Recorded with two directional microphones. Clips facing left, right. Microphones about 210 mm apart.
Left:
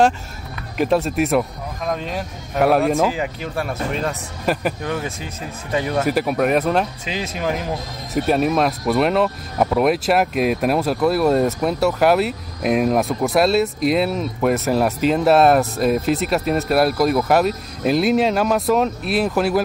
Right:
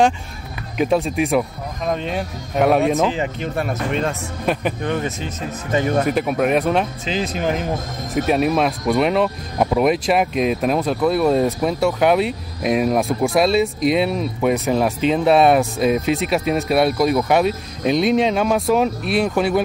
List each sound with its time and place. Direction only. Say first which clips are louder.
0.7 s speech: even; centre (ahead or behind)